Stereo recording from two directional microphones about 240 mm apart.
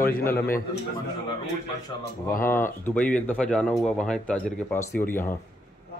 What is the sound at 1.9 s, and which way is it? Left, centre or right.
Speech, centre.